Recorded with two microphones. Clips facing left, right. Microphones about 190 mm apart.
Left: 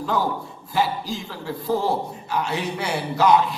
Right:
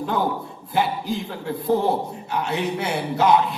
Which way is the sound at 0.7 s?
60° right (ahead or behind).